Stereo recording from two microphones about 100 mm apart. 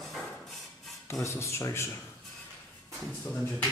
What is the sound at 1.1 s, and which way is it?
Speech, 30° left (ahead or behind).